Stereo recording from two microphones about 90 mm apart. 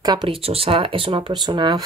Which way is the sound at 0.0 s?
50° right (ahead or behind).